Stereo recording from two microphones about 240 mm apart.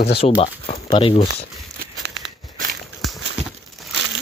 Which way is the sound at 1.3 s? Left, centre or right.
Right.